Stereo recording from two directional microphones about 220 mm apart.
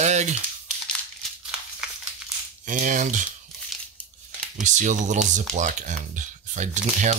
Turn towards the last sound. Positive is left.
turn(degrees=-35)  # may be behind; listen again after turning